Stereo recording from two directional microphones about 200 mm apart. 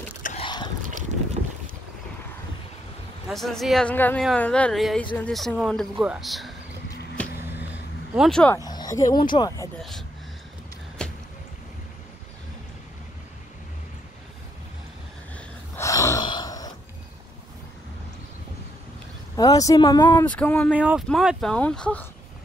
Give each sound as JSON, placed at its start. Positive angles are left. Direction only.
{"t": 0.4, "sound": "boat", "side_deg": 20}
{"t": 0.8, "sound": "boat", "side_deg": -40}
{"t": 3.3, "sound": "speech", "side_deg": 0}
{"t": 7.2, "sound": "a sound", "side_deg": 5}
{"t": 8.1, "sound": "speech", "side_deg": 0}
{"t": 8.6, "sound": "speech", "side_deg": 20}
{"t": 9.8, "sound": "a sound", "side_deg": 0}
{"t": 15.7, "sound": "a sound", "side_deg": 15}
{"t": 19.3, "sound": "speech", "side_deg": 20}
{"t": 20.2, "sound": "speech", "side_deg": 5}
{"t": 20.7, "sound": "speech", "side_deg": -5}